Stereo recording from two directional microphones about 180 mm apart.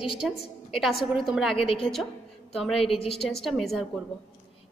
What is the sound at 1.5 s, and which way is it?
Speech, 30° left (ahead or behind).